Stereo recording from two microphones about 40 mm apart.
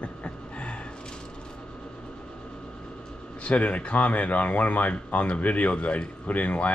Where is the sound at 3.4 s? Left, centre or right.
Left.